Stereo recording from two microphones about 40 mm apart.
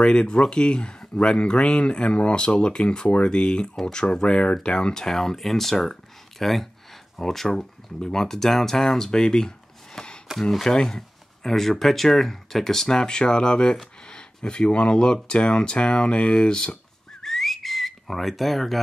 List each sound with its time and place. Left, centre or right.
0.0 s speech: left
9.9 s a sound: left
10.6 s speech: centre
17.2 s whistling: centre